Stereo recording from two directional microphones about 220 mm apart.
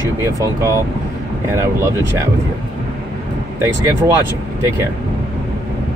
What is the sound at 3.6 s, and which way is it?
Speech, 10° right (ahead or behind).